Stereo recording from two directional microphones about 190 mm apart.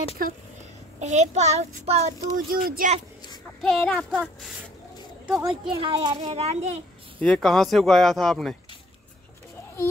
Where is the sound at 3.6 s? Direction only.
Centre (ahead or behind).